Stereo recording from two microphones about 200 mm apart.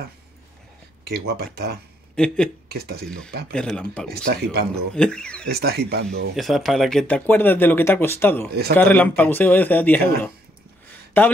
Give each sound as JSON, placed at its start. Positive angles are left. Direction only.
{"t": 1.0, "sound": "speech", "side_deg": -50}
{"t": 2.1, "sound": "speech", "side_deg": 5}
{"t": 2.7, "sound": "speech", "side_deg": -50}
{"t": 3.5, "sound": "speech", "side_deg": 5}
{"t": 4.1, "sound": "speech", "side_deg": -50}
{"t": 4.9, "sound": "speech", "side_deg": 5}
{"t": 5.5, "sound": "speech", "side_deg": -50}
{"t": 6.3, "sound": "speech", "side_deg": 0}
{"t": 11.2, "sound": "speech", "side_deg": 10}